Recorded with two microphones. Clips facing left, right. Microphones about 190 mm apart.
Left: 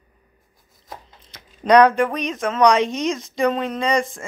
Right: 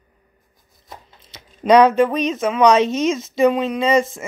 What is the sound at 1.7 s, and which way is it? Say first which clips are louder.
Speech: right 2 dB; 20° right (ahead or behind).